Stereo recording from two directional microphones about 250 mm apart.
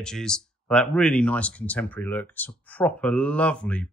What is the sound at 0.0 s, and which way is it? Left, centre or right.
Speech, centre.